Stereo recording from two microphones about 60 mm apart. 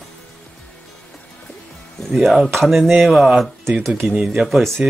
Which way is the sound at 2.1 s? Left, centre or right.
Centre.